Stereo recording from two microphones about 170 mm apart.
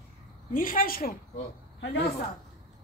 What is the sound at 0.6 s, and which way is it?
Speech, 55° left (ahead or behind).